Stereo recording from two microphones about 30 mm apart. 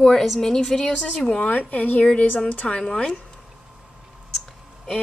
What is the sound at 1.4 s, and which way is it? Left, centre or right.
Speech, left.